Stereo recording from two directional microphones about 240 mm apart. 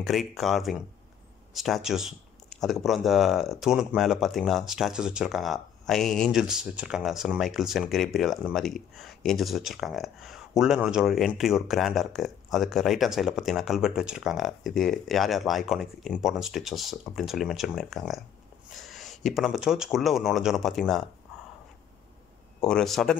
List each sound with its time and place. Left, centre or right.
0.0 s speech: centre
22.6 s speech: centre